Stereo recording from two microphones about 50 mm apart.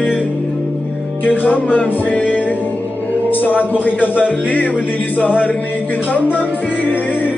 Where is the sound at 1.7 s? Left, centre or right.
Left.